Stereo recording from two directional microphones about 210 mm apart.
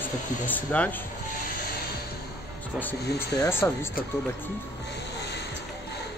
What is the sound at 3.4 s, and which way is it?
Speech, 10° left (ahead or behind).